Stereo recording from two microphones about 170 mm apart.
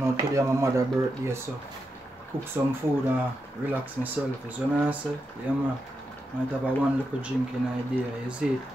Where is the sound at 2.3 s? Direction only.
15° right (ahead or behind).